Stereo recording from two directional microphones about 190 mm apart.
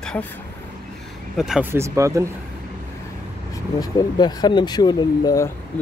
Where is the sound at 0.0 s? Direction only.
5° left (ahead or behind).